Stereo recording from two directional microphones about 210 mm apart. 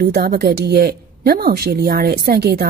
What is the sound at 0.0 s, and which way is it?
A woman's voice, 50° right (ahead or behind).